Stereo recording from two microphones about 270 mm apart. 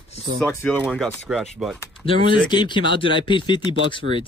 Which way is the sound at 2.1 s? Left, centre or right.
Centre.